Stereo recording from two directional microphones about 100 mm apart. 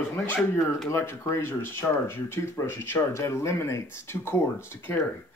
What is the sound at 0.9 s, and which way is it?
Speech, 25° left (ahead or behind).